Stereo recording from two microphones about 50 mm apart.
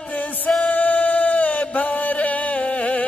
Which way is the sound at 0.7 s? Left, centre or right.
Left.